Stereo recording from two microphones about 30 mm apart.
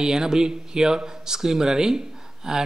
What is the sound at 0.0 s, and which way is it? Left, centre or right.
Speech, right.